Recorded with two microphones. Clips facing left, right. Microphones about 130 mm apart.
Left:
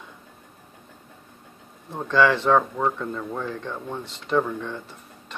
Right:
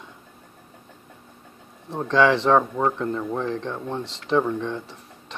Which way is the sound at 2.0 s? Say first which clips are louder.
Right 1 dB; 20° right (ahead or behind).